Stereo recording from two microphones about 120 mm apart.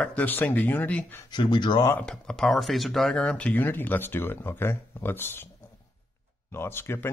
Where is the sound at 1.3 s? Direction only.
40° left (ahead or behind).